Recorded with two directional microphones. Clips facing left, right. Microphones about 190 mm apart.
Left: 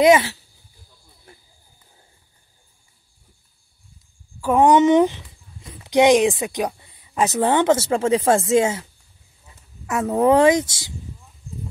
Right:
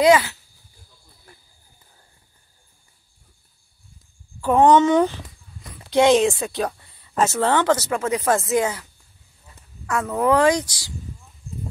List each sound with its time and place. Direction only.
0.0 s speech: 25° left (ahead or behind)
4.4 s speech: 10° left (ahead or behind)
9.8 s speech: 25° left (ahead or behind)